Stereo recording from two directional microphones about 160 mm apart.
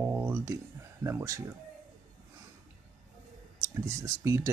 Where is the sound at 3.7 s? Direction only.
20° right (ahead or behind).